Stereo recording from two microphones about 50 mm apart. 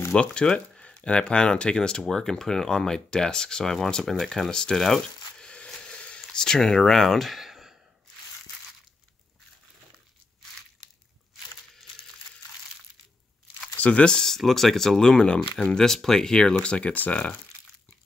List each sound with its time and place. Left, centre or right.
0.1 s speech: left; by 5.5 s centre
5.7 s a sound: centre
13.7 s speech: left
14.3 s speech: centre
16.9 s speech: left